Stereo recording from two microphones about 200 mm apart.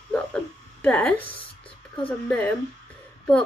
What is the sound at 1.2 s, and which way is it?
Speech, 25° left (ahead or behind).